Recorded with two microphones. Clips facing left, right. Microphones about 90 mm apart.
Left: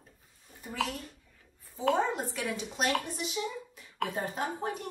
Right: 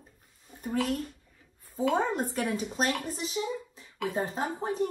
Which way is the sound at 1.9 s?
40° right (ahead or behind).